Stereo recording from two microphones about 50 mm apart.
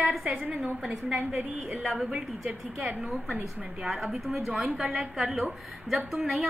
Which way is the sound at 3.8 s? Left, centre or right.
Centre.